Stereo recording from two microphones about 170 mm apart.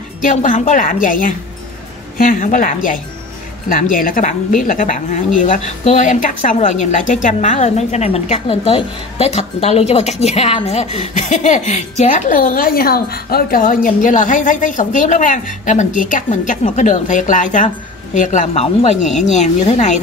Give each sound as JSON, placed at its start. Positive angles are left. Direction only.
{"t": 0.2, "sound": "a woman's voice", "side_deg": 50}